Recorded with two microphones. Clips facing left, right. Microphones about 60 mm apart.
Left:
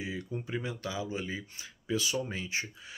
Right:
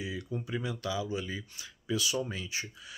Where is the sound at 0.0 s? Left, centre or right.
Left.